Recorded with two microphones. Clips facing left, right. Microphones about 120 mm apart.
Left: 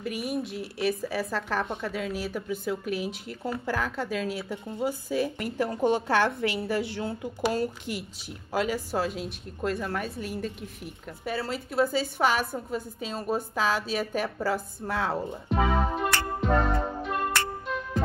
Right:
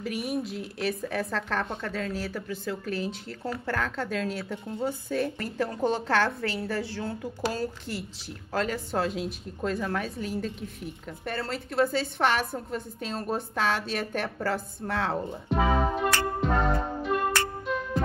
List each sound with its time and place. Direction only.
0.0 s a woman's voice: centre (ahead or behind)
16.3 s music: centre (ahead or behind)